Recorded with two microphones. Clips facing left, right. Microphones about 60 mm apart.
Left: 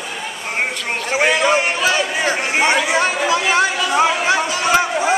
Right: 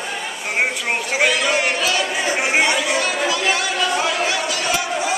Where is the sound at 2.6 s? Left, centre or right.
Left.